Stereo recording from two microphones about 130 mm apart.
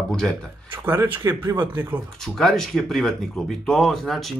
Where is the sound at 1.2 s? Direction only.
25° right (ahead or behind).